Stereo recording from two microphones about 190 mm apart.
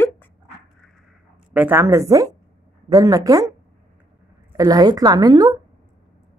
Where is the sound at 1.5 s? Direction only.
10° right (ahead or behind).